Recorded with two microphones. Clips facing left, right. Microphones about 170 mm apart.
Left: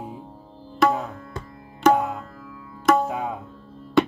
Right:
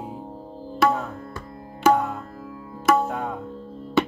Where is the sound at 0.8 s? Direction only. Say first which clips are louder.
Left 1 dB; centre (ahead or behind).